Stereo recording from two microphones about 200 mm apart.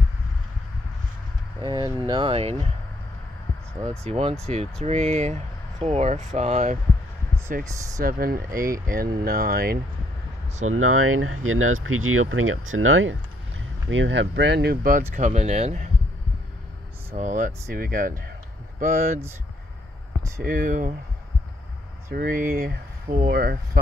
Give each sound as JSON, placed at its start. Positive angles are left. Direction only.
{"t": 1.6, "sound": "speech", "side_deg": -20}
{"t": 4.0, "sound": "speech", "side_deg": -30}
{"t": 7.7, "sound": "speech", "side_deg": -15}
{"t": 8.0, "sound": "speech", "side_deg": -45}
{"t": 10.7, "sound": "speech", "side_deg": -90}
{"t": 13.8, "sound": "speech", "side_deg": -65}
{"t": 17.1, "sound": "speech", "side_deg": -40}
{"t": 20.4, "sound": "speech", "side_deg": -40}
{"t": 22.1, "sound": "speech", "side_deg": -45}